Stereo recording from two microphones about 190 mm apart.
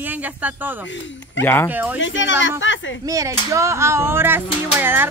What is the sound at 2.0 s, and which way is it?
A woman's voice, 75° left (ahead or behind).